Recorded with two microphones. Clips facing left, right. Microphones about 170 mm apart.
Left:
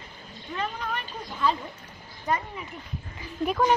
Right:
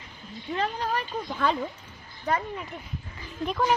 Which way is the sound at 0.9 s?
65° right (ahead or behind).